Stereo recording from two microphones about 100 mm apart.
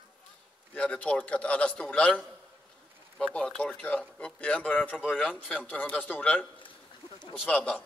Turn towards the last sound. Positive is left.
turn(degrees=10)  # may be behind; listen again after turning